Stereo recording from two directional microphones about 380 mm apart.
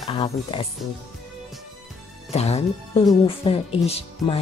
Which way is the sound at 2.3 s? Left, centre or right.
Centre.